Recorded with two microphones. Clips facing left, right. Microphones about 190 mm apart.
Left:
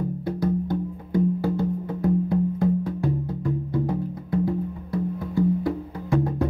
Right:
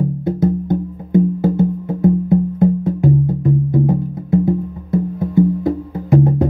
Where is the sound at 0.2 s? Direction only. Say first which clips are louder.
Right 6 dB; 20° right (ahead or behind).